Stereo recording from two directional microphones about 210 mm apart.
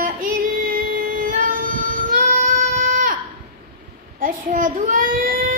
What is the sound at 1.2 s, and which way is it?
Child singing, 40° right (ahead or behind).